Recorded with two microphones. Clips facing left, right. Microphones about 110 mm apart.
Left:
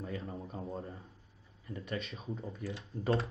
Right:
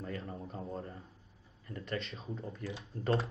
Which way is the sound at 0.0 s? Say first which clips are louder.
Left 1 dB; 10° left (ahead or behind).